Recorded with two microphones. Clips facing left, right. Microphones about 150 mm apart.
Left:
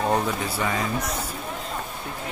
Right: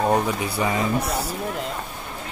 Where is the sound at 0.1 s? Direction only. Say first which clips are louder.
Right 2 dB; 15° right (ahead or behind).